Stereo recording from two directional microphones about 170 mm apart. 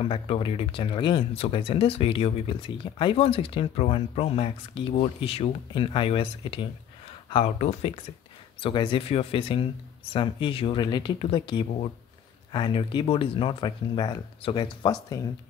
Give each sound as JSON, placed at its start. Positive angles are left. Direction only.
{"t": 0.0, "sound": "speech", "side_deg": 30}